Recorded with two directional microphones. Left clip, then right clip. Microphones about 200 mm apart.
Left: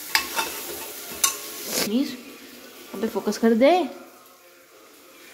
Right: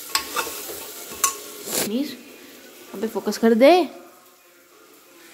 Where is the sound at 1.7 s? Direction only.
15° right (ahead or behind).